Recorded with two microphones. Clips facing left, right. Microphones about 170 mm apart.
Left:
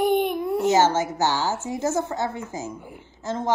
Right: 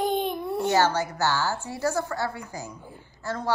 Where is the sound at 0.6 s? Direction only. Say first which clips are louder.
Left 3 dB; 20° left (ahead or behind).